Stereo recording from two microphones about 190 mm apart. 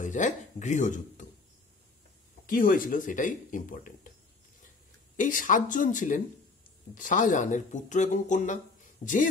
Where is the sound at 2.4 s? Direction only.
45° left (ahead or behind).